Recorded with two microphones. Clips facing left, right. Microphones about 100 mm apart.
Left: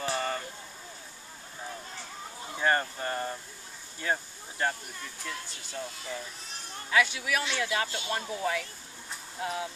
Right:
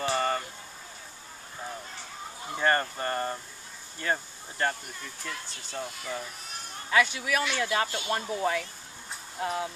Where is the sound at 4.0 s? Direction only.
5° left (ahead or behind).